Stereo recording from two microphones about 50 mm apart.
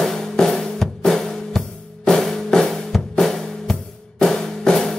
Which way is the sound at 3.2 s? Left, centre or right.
Centre.